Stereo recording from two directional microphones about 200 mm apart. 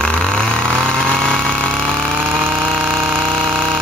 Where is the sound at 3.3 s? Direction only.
Centre (ahead or behind).